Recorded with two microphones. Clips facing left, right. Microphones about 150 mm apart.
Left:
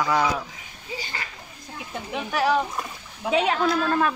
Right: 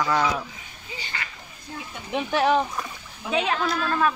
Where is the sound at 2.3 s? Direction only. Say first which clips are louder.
Right 1 dB; 25° right (ahead or behind).